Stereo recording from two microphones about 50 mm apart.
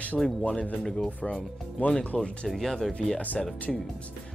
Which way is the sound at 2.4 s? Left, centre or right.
Centre.